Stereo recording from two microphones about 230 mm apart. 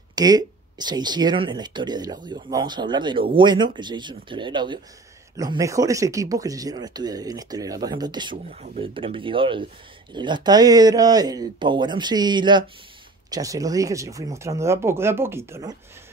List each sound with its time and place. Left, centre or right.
0.1 s speech: centre